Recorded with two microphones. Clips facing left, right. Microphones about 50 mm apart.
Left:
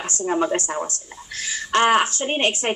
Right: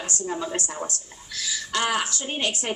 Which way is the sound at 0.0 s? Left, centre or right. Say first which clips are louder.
Left 7 dB; left.